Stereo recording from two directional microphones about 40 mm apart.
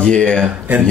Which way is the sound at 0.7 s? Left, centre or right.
Right.